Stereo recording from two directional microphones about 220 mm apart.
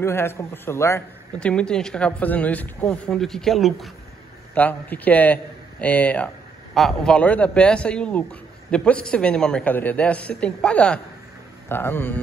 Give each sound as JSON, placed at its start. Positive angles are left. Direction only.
{"t": 0.0, "sound": "a man's voice", "side_deg": 10}